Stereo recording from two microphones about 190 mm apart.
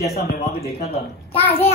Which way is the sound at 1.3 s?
30° left (ahead or behind).